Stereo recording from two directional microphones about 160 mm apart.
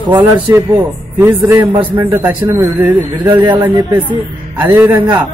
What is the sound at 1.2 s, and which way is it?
A man's voice, 20° right (ahead or behind).